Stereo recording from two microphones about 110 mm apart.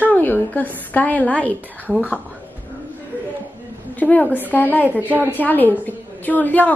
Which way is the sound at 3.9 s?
15° left (ahead or behind).